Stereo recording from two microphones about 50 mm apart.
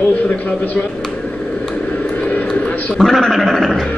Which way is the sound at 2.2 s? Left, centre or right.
Left.